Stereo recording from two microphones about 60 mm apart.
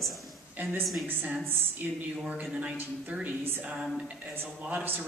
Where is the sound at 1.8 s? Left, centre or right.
Right.